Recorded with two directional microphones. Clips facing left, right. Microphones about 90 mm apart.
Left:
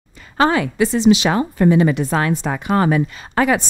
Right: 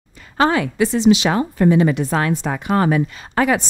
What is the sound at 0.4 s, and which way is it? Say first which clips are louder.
A woman's voice: left 1 dB; 15° left (ahead or behind).